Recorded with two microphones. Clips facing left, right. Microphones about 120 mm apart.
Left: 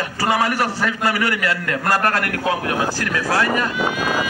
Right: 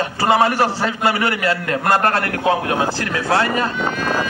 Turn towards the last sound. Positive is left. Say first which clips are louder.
# even
turn(degrees=10)  # may be behind; listen again after turning